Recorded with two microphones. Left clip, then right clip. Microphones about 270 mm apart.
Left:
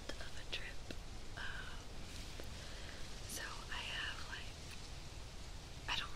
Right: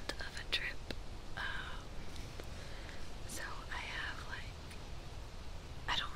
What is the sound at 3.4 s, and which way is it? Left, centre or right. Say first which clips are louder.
Whispering: right 2 dB; centre.